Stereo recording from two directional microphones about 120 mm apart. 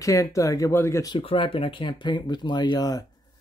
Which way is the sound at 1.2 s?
50° left (ahead or behind).